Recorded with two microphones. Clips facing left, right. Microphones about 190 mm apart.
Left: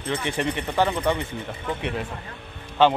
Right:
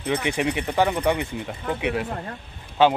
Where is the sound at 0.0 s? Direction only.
15° right (ahead or behind).